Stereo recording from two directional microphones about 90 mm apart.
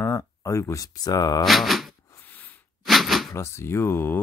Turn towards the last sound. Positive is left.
turn(degrees=25)  # may be behind; listen again after turning